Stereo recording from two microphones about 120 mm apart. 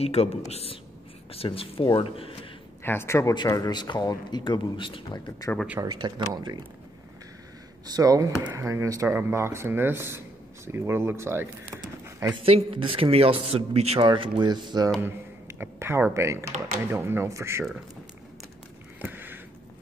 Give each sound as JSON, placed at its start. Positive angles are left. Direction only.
{"t": 0.0, "sound": "speech", "side_deg": 60}
{"t": 2.8, "sound": "a man's voice", "side_deg": 20}
{"t": 5.8, "sound": "speech", "side_deg": -35}
{"t": 7.8, "sound": "speech", "side_deg": -30}
{"t": 12.4, "sound": "speech", "side_deg": -50}
{"t": 14.0, "sound": "speech", "side_deg": -45}
{"t": 15.0, "sound": "speech", "side_deg": -20}
{"t": 18.9, "sound": "a sound", "side_deg": -15}